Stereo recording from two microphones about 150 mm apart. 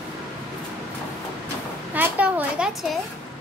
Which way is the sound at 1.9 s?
10° right (ahead or behind).